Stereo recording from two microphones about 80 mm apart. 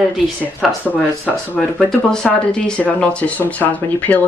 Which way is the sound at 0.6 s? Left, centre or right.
Centre.